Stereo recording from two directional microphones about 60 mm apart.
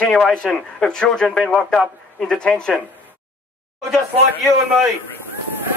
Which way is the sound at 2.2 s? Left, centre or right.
Centre.